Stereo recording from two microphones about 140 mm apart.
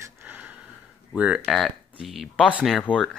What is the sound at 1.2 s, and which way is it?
Speech, 5° right (ahead or behind).